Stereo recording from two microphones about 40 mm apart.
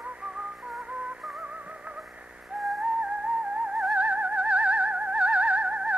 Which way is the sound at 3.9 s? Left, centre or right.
Right.